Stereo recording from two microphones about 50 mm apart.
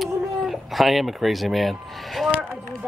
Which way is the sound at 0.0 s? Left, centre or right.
Centre.